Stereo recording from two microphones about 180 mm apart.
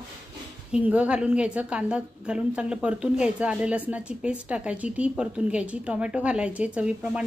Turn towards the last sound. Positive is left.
turn(degrees=-5)  # may be behind; listen again after turning